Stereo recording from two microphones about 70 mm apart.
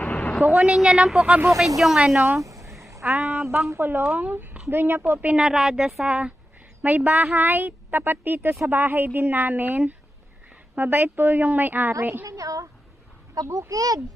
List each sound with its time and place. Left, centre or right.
0.0 s a sound: left
0.4 s a woman's voice: centre
0.7 s a woman's voice: centre
1.8 s a woman's voice: centre
2.4 s a sound: right
3.1 s a woman's voice: right
5.3 s a woman's voice: centre
6.0 s a woman's voice: centre
12.3 s speech: right